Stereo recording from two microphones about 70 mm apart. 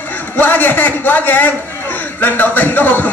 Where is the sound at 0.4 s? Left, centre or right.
Left.